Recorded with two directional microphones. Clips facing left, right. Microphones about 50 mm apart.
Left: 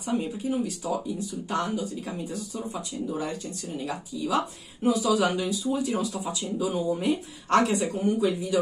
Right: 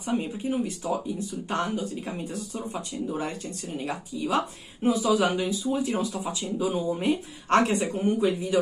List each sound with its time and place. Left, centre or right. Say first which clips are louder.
0.0 s speech: even; right